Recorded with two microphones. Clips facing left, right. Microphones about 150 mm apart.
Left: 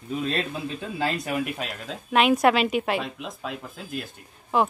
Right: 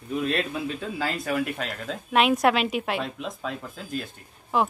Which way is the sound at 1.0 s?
15° left (ahead or behind).